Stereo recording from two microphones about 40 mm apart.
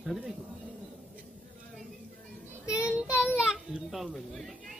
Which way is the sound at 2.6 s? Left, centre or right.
Right.